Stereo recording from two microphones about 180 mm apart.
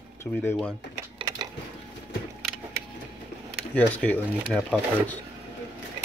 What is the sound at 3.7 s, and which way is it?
Speech, 10° left (ahead or behind).